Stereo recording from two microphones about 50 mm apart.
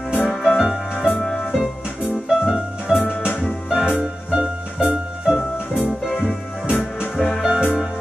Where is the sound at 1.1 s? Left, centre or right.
Centre.